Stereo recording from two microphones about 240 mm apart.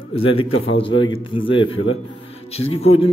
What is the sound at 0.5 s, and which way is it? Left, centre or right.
Speech, left.